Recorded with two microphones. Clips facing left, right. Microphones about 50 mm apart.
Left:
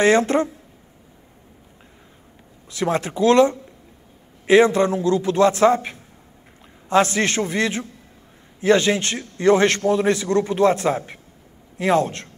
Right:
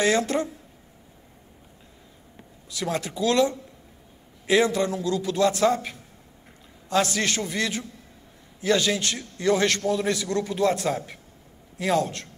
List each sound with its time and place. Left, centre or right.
0.0 s a man's voice: left
2.7 s a man's voice: left